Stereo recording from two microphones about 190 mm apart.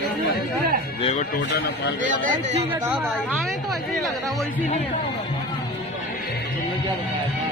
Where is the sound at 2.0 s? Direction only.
45° right (ahead or behind).